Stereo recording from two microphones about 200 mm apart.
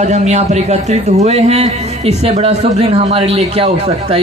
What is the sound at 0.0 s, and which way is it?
Speech, 35° right (ahead or behind).